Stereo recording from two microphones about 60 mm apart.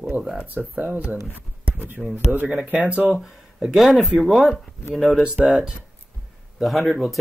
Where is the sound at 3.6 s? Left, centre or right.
Centre.